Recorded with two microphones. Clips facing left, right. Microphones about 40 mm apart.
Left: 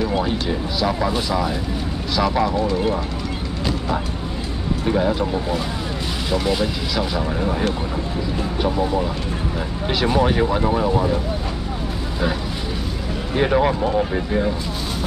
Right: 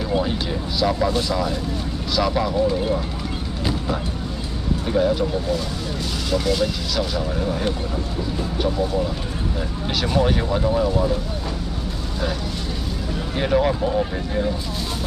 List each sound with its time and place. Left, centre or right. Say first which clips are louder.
0.1 s speech: left 1 dB; centre
4.8 s speech: even; centre
5.2 s speech: left 1 dB; left
8.6 s speech: left 2 dB; left
13.3 s speech: left 2 dB; centre